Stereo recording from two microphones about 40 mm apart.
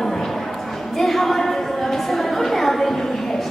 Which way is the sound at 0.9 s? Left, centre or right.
Centre.